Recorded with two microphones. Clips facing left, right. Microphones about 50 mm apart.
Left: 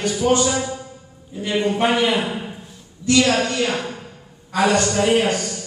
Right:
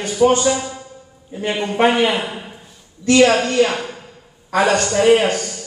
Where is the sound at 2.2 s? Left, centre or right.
Centre.